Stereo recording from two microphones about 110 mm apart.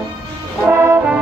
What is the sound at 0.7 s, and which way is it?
Brass instrument, 25° right (ahead or behind).